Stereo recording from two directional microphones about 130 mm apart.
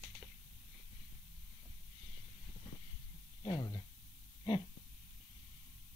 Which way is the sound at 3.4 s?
35° left (ahead or behind).